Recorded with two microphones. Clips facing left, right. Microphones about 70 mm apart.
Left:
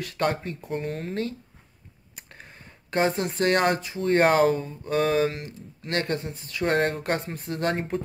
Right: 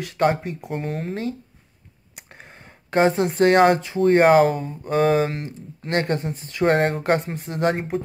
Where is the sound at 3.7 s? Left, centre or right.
Right.